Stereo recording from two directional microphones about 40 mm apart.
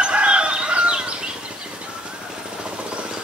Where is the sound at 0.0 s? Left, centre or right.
Right.